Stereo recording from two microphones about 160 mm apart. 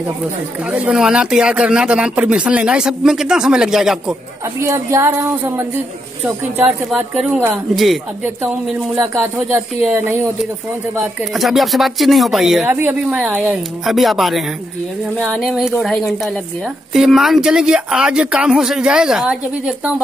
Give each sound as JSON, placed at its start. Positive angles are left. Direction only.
{"t": 0.7, "sound": "speech", "side_deg": -5}
{"t": 4.6, "sound": "speech", "side_deg": -15}
{"t": 7.7, "sound": "speech", "side_deg": 0}
{"t": 11.3, "sound": "speech", "side_deg": 0}